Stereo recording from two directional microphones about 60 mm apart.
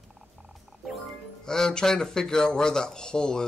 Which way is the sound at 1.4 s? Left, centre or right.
Centre.